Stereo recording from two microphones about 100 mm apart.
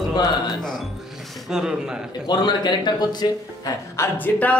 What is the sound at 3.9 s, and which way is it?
Speech, 20° left (ahead or behind).